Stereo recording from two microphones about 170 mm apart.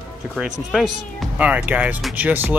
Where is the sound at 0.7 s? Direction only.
Centre (ahead or behind).